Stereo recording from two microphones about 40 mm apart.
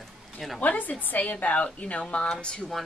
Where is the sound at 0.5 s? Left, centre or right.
Left.